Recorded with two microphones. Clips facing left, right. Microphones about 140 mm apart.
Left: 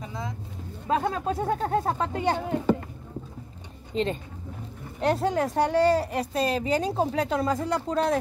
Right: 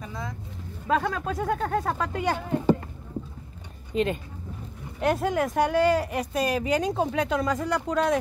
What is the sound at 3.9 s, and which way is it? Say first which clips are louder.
A woman's voice: right 2 dB; 30° left (ahead or behind).